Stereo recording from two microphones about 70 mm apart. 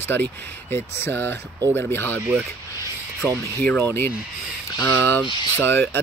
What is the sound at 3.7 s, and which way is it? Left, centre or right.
Speech, left.